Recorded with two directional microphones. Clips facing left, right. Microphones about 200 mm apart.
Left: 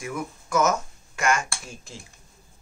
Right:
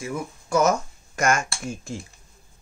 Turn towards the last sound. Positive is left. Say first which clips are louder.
# right 8 dB
turn(degrees=-50)  # may be behind; listen again after turning